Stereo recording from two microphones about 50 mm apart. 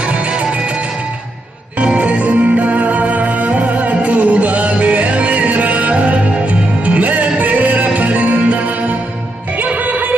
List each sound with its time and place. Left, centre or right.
0.0 s music: right
1.8 s music: right